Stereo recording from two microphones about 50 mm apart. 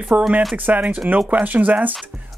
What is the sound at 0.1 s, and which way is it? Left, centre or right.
Speech, right.